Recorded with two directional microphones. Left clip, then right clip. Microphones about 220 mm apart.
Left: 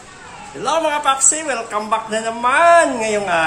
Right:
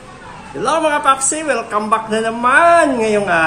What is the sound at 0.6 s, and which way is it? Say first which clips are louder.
A man's voice: right 3 dB; centre (ahead or behind).